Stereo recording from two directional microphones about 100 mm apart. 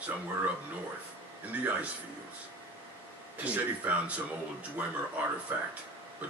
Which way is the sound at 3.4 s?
15° right (ahead or behind).